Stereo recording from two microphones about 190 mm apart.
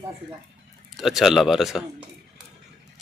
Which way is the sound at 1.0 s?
Centre (ahead or behind).